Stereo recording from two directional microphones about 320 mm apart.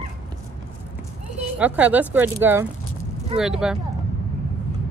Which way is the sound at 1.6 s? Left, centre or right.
Centre.